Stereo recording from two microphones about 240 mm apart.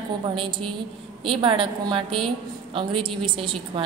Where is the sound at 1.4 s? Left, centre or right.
Right.